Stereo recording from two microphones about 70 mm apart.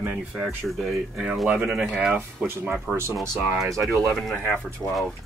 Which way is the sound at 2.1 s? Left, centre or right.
Right.